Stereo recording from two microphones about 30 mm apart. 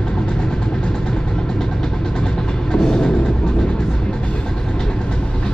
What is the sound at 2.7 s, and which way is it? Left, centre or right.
Music, left.